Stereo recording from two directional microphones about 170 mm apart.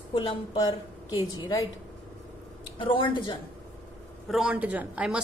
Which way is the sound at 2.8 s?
30° left (ahead or behind).